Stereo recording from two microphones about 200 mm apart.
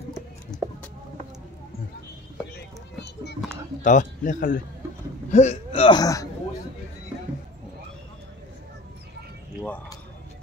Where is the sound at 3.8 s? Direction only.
40° left (ahead or behind); by 6.2 s 20° left (ahead or behind).